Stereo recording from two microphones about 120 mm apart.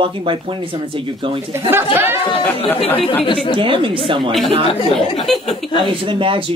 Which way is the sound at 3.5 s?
45° right (ahead or behind).